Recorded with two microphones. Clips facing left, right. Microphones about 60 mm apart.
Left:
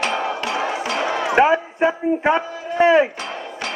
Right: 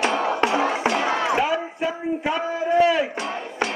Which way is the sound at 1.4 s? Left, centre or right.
Left.